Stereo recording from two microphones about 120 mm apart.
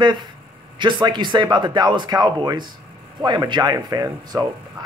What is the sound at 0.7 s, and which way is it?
A man's voice, 40° right (ahead or behind).